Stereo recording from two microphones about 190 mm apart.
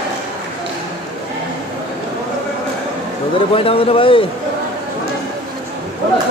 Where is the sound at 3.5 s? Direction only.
30° left (ahead or behind).